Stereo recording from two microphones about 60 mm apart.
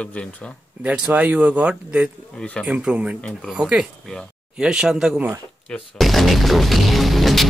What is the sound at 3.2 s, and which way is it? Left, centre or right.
Speech, centre.